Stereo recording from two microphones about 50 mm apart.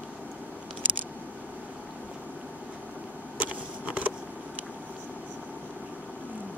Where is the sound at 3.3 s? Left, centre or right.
Right.